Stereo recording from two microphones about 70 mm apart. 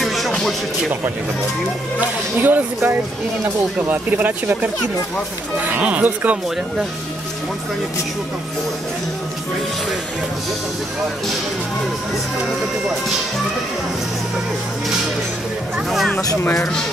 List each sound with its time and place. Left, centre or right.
0.0 s music: centre
2.0 s speech: right